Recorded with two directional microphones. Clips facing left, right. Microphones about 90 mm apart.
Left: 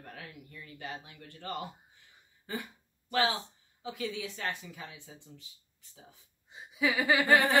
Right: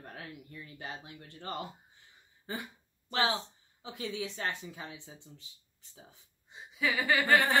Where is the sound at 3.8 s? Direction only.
30° right (ahead or behind).